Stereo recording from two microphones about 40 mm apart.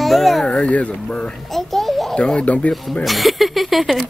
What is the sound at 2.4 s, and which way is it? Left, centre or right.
Speech, left.